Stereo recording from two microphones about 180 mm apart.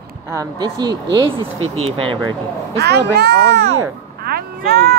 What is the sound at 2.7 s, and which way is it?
Speech, 65° right (ahead or behind).